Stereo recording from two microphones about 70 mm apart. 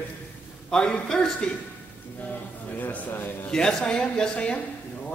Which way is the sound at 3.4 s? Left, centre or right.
Centre.